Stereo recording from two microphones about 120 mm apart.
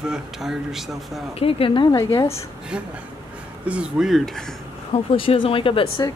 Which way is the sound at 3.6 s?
10° right (ahead or behind).